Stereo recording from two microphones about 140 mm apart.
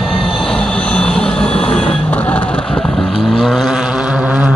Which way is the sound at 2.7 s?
40° left (ahead or behind).